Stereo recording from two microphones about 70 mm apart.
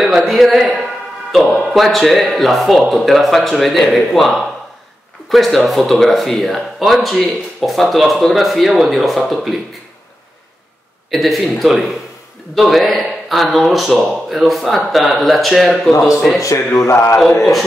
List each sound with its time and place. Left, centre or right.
0.0 s speech: centre
11.1 s speech: centre
16.3 s a sound: left
17.2 s speech: centre